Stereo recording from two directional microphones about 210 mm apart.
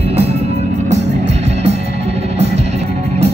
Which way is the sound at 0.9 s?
30° right (ahead or behind).